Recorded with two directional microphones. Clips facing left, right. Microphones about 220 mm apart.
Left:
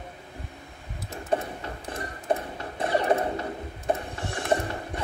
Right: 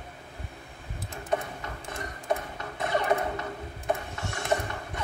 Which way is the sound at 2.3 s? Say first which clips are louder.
Left 3 dB; 30° left (ahead or behind).